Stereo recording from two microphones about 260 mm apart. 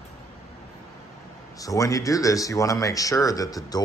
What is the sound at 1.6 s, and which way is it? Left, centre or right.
Speech, centre.